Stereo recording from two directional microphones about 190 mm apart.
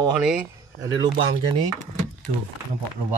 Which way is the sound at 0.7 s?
20° right (ahead or behind).